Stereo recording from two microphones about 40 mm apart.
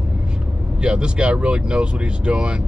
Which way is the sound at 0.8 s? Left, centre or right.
Right.